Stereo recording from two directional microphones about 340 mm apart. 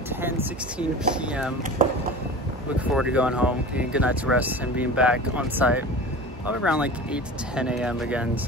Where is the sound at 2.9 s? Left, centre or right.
Centre.